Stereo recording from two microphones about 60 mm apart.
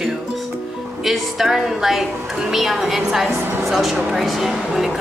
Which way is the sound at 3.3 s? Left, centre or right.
Right.